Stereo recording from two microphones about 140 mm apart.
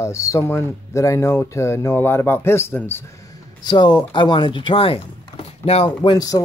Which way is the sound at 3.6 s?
30° left (ahead or behind).